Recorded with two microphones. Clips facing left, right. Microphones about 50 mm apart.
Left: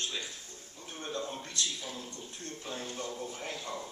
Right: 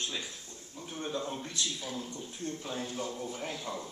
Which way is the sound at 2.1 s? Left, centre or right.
Centre.